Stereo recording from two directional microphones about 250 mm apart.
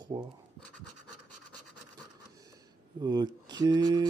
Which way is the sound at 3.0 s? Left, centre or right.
Centre.